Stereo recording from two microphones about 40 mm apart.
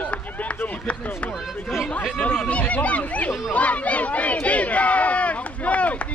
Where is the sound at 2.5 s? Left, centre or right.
Left.